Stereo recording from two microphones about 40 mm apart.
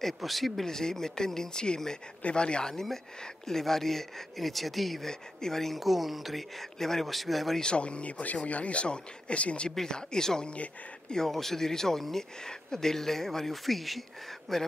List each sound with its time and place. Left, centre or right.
0.0 s speech: centre
0.7 s speech: centre
2.7 s speech: centre
7.7 s speech: left
9.7 s speech: centre